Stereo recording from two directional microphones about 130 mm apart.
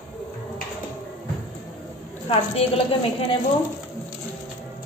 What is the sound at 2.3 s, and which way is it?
Speech, 50° left (ahead or behind).